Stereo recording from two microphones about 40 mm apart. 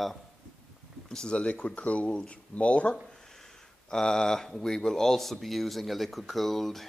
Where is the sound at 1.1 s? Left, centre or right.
Left.